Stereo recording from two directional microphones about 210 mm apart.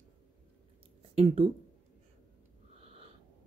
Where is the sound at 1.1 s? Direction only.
25° right (ahead or behind).